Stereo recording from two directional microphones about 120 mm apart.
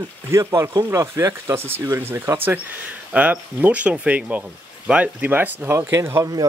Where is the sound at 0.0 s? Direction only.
25° right (ahead or behind).